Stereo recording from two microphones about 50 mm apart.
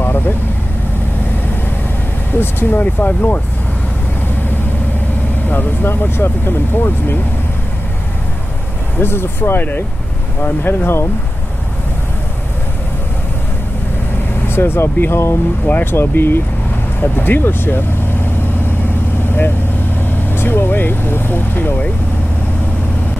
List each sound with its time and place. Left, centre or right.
2.3 s speech: left
2.8 s speech: left
5.5 s speech: left
9.0 s speech: left
14.5 s speech: left
15.6 s speech: left
20.1 s speech: left